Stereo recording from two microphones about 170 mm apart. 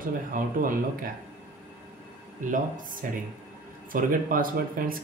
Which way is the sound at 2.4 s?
50° right (ahead or behind).